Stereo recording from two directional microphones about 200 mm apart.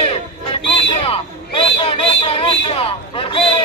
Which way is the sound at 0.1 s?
25° left (ahead or behind).